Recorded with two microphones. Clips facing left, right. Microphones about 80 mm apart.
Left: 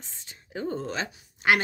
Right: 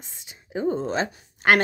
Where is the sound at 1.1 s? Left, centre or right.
Right.